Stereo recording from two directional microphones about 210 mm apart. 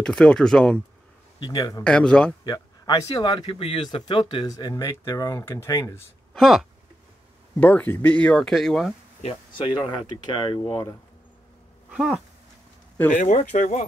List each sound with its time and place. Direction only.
0.0 s speech: 5° left (ahead or behind)
1.4 s speech: 20° left (ahead or behind)
1.9 s speech: 5° left (ahead or behind)
2.4 s speech: 15° left (ahead or behind)
6.3 s speech: centre (ahead or behind)
9.2 s speech: 25° left (ahead or behind)
11.9 s speech: 5° right (ahead or behind)
13.1 s speech: 35° left (ahead or behind)